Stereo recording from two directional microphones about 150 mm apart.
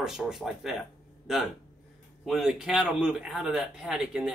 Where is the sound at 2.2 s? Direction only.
Centre (ahead or behind).